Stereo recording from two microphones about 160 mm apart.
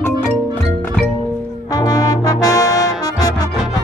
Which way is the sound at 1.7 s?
25° left (ahead or behind).